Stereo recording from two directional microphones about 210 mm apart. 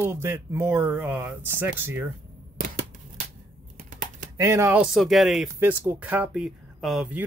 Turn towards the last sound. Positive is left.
turn(degrees=-5)  # may be behind; listen again after turning